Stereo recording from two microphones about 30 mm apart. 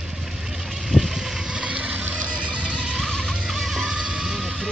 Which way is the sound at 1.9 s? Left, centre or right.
Right.